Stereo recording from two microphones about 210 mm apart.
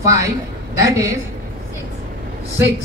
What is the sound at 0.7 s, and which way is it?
Speech, 15° right (ahead or behind).